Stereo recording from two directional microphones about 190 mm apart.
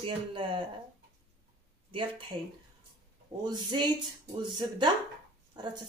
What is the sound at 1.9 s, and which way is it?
Speech, 25° right (ahead or behind).